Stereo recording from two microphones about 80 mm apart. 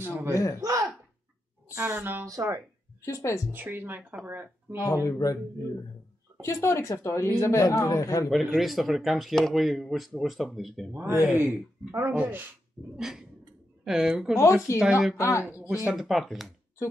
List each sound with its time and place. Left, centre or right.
0.3 s a man's voice: left
0.6 s a sound: right
1.8 s speech: right
2.2 s speech: right
3.1 s a man's voice: left
3.5 s speech: right
4.7 s speech: left
6.4 s a man's voice: left
8.5 s speech: centre
10.9 s speech: right
12.9 s a woman's voice: centre
15.1 s a man's voice: left
15.7 s speech: centre